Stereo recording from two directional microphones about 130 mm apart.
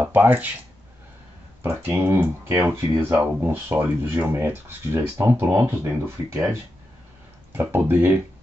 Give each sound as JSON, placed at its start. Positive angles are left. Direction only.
{"t": 0.0, "sound": "speech", "side_deg": -15}
{"t": 1.6, "sound": "speech", "side_deg": -20}